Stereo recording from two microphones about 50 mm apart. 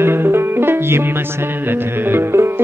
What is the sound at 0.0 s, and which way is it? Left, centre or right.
Music, right.